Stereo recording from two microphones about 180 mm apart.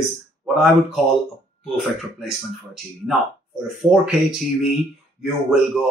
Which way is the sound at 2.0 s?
Centre (ahead or behind).